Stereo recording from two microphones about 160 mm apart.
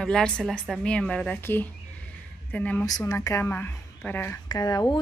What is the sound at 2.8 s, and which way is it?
A woman's voice, 20° left (ahead or behind).